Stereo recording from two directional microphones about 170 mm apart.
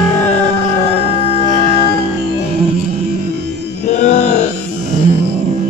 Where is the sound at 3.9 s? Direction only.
45° left (ahead or behind).